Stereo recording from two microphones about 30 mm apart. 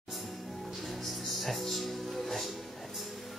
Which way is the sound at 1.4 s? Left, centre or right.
Centre.